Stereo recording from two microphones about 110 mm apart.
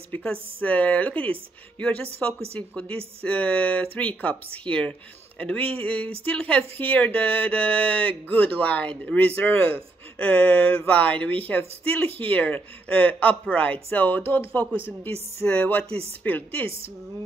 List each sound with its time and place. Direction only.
0.1 s a woman's voice: 15° left (ahead or behind)